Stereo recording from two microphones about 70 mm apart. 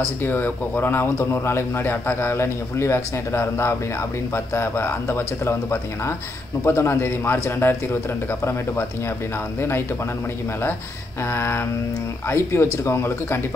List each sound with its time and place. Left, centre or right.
0.2 s a man's voice: left
11.2 s a man's voice: left